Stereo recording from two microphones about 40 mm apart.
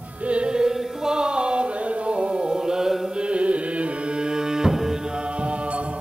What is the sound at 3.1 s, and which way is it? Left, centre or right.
Music, right.